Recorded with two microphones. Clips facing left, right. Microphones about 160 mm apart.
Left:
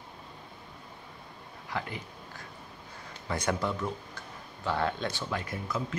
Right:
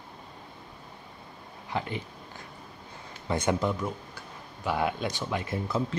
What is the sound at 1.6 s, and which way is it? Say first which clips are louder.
Speech: right 4 dB; 20° right (ahead or behind).